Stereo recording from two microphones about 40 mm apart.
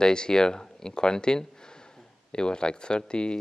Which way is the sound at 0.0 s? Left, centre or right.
Centre.